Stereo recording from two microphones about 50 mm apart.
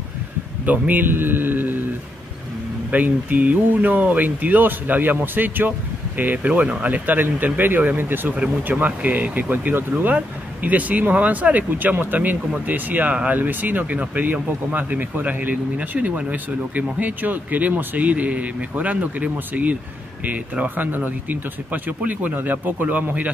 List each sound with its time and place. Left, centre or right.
0.7 s speech: right
2.9 s speech: right
13.1 s speech: right
13.4 s speech: right